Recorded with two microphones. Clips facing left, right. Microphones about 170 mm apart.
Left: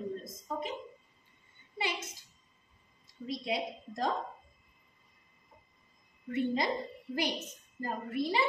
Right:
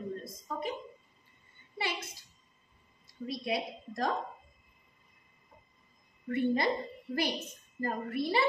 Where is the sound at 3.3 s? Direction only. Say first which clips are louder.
Even; 20° left (ahead or behind).